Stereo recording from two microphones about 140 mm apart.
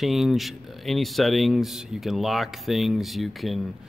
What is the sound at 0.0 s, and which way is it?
Speech, centre (ahead or behind).